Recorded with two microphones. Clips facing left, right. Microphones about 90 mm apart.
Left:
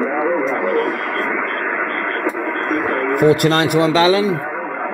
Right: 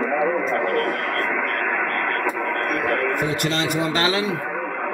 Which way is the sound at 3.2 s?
55° left (ahead or behind).